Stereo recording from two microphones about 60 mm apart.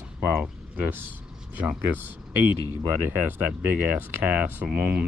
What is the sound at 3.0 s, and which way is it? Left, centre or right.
Speech, right.